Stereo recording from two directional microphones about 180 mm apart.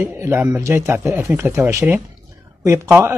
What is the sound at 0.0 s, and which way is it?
Speech, 15° right (ahead or behind).